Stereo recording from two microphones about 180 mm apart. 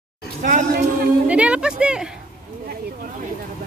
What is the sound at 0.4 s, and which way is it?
Speech, 45° right (ahead or behind).